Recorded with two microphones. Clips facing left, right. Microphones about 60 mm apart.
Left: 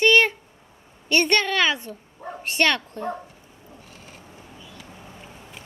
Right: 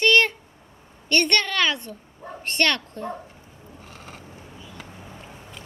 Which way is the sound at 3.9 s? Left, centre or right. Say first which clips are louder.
Right 6 dB; right.